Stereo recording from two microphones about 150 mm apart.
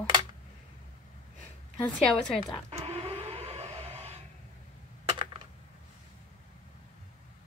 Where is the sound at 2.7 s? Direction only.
45° right (ahead or behind).